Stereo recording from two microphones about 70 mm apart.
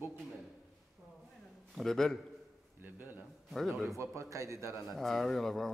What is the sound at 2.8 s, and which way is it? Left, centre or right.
Speech, right.